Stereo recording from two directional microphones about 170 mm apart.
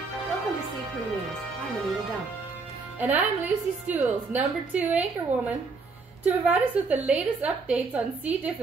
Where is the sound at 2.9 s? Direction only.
10° right (ahead or behind).